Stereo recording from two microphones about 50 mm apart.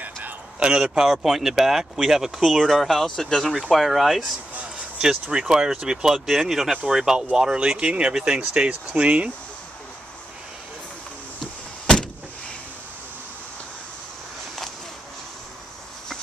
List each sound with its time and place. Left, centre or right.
0.0 s a sound: right
0.7 s speech: centre
3.7 s speech: centre
5.4 s speech: centre